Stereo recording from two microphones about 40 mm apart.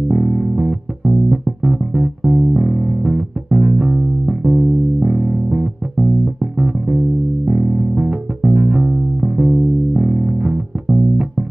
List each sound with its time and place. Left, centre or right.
0.1 s music: right